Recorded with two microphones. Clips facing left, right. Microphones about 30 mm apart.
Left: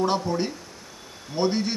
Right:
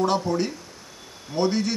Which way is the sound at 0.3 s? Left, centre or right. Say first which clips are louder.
Right 2 dB; centre.